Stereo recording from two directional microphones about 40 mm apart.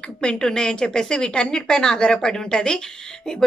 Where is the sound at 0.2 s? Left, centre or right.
Centre.